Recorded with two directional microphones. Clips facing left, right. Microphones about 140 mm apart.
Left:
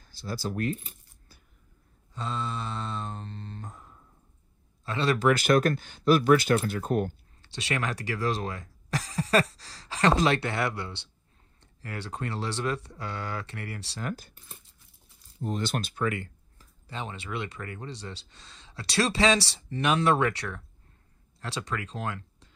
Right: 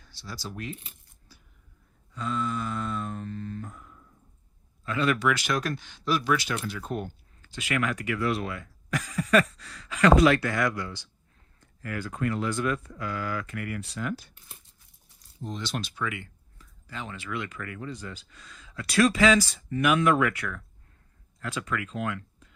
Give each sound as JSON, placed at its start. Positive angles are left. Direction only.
{"t": 0.0, "sound": "speech", "side_deg": 50}
{"t": 2.1, "sound": "speech", "side_deg": 25}
{"t": 5.2, "sound": "speech", "side_deg": 50}
{"t": 7.4, "sound": "speech", "side_deg": 30}
{"t": 13.9, "sound": "speech", "side_deg": 45}
{"t": 15.5, "sound": "speech", "side_deg": 50}
{"t": 16.8, "sound": "speech", "side_deg": 25}